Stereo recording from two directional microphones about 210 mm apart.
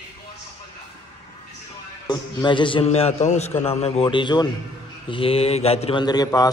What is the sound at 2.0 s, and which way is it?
A man's voice, 20° left (ahead or behind).